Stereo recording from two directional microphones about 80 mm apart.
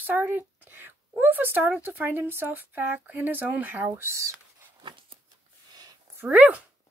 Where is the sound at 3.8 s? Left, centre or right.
Right.